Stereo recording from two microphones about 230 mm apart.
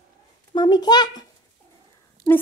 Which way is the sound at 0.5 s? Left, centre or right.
Centre.